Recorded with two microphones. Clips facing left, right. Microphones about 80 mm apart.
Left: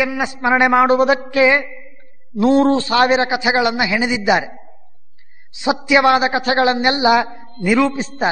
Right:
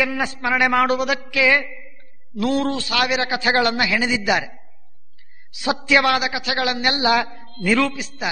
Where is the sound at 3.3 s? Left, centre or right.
Centre.